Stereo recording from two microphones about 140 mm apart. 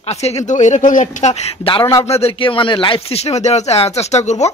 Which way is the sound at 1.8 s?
20° left (ahead or behind).